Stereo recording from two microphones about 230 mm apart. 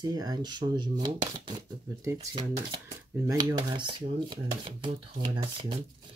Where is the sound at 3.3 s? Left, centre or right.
Centre.